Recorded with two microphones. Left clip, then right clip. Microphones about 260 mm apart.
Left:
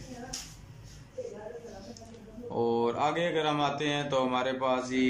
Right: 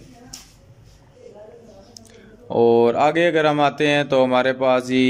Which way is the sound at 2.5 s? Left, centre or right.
Right.